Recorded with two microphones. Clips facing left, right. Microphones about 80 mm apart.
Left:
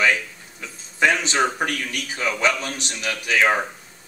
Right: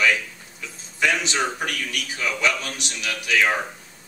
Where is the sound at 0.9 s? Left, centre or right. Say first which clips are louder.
Left 3 dB; left.